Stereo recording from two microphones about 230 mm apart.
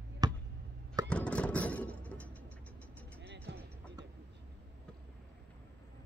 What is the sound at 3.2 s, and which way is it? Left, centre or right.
Music, right.